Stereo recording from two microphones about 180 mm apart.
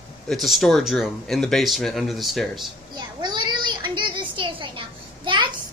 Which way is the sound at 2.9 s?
25° right (ahead or behind).